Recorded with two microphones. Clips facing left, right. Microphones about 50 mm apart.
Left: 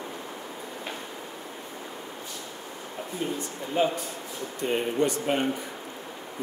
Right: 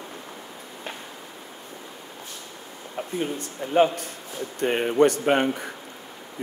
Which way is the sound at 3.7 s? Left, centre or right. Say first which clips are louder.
Right 6 dB; right.